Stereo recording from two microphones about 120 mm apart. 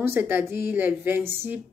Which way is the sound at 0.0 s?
20° right (ahead or behind).